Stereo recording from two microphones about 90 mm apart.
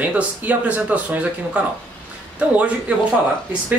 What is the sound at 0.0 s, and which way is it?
A man's voice, 15° right (ahead or behind).